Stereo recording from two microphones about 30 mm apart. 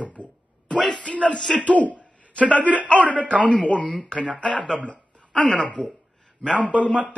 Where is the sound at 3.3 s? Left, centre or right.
Right.